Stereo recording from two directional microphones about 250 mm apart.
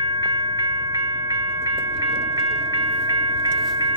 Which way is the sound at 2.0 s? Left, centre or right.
Centre.